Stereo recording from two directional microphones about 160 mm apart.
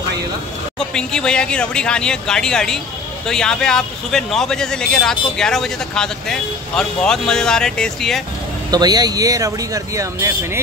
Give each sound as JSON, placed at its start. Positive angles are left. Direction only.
{"t": 0.7, "sound": "a man's voice", "side_deg": 5}
{"t": 8.6, "sound": "speech", "side_deg": -25}